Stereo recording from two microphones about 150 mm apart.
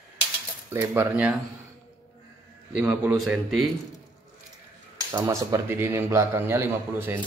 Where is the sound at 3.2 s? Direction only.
Centre (ahead or behind).